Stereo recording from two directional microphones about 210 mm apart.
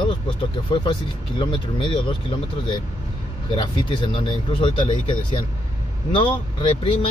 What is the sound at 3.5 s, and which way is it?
Speech, 20° left (ahead or behind).